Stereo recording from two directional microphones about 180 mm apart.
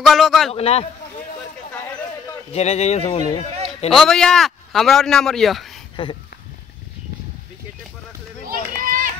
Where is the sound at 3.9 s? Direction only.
5° left (ahead or behind).